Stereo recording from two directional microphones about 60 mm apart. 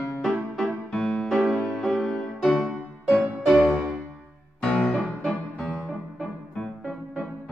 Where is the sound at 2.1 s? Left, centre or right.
Centre.